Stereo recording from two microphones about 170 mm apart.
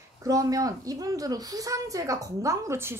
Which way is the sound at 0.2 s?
20° right (ahead or behind).